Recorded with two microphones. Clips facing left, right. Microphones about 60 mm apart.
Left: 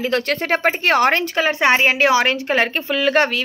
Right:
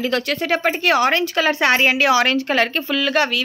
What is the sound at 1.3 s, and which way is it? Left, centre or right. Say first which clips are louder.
A woman's voice: left 1 dB; left.